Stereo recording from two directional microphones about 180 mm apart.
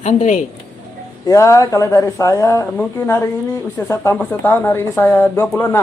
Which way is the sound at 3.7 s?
15° left (ahead or behind).